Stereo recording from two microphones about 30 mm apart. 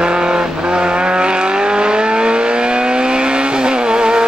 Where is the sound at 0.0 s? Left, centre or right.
Right.